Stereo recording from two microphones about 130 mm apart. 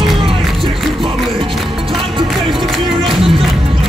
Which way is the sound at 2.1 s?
35° right (ahead or behind).